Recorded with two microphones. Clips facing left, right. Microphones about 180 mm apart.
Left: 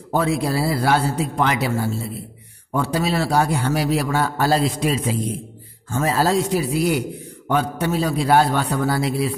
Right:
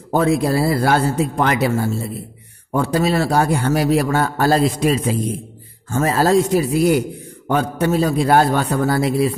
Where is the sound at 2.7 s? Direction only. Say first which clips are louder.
Right 4 dB; 45° right (ahead or behind).